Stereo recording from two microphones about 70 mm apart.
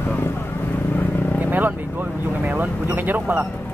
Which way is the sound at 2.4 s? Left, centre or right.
Right.